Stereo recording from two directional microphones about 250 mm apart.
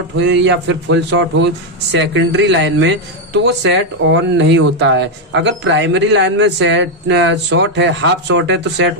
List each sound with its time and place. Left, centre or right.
0.2 s speech: right